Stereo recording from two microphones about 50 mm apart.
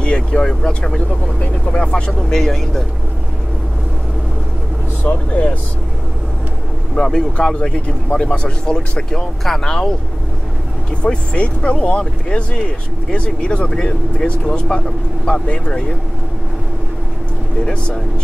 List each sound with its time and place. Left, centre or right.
0.0 s speech: left
2.4 s speech: centre
5.0 s speech: left
7.0 s speech: centre
7.3 s speech: left
11.0 s speech: left